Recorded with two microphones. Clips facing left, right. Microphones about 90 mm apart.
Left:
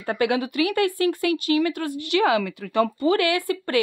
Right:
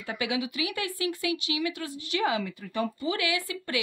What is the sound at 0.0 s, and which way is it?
Speech, 55° left (ahead or behind).